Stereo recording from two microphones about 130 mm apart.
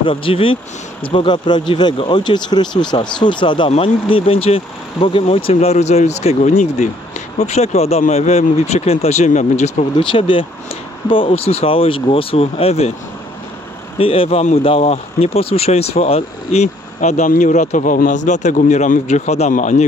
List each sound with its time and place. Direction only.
0.0 s speech: 45° left (ahead or behind); by 9.8 s 65° left (ahead or behind)
9.9 s speech: 40° left (ahead or behind)
13.9 s speech: 45° left (ahead or behind); by 19.7 s 65° left (ahead or behind)